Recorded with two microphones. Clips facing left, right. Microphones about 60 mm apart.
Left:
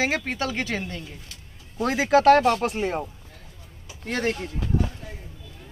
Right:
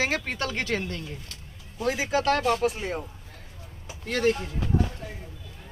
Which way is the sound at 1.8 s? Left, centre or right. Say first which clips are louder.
Left 6 dB; left.